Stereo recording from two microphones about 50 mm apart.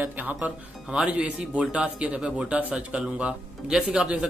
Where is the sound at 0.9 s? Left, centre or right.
Centre.